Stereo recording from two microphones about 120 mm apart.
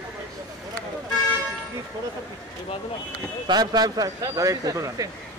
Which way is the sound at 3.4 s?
35° right (ahead or behind).